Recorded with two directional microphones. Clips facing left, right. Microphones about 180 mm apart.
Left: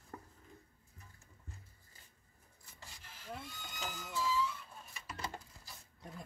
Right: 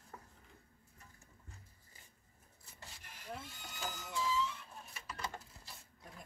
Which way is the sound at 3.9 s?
15° right (ahead or behind).